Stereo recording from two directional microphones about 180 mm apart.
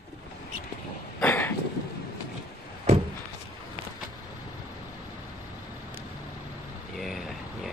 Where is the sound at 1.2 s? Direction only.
10° left (ahead or behind).